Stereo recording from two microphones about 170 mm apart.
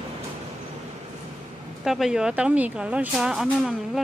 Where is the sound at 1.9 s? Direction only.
Centre (ahead or behind).